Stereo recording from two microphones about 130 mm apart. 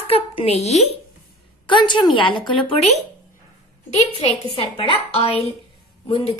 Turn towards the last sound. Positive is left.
turn(degrees=40)  # may be behind; listen again after turning